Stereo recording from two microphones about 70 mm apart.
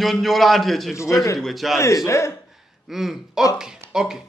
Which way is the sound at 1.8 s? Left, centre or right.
Left.